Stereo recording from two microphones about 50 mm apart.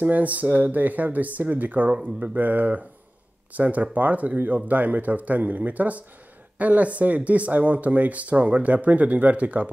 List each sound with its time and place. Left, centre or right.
0.0 s speech: right